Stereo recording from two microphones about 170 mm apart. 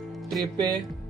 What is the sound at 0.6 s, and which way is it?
Speech, 25° right (ahead or behind).